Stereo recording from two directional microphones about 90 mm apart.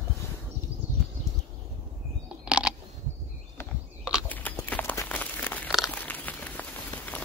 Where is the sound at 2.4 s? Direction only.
10° right (ahead or behind).